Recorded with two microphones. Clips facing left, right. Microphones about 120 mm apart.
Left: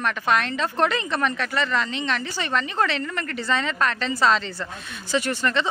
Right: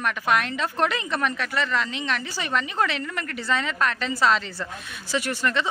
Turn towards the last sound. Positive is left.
turn(degrees=-5)  # may be behind; listen again after turning